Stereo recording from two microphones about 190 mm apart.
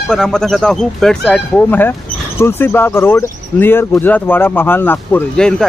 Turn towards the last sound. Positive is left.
turn(degrees=5)  # may be behind; listen again after turning